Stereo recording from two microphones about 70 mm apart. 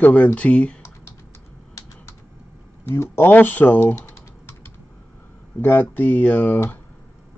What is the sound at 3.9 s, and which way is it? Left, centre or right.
Typing, left.